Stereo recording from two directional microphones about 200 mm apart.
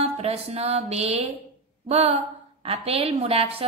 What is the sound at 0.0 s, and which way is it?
A woman's voice, 30° right (ahead or behind).